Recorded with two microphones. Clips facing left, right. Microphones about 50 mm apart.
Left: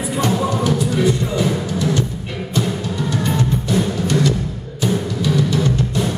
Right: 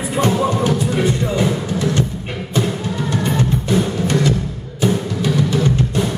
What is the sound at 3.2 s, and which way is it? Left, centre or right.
Music, right.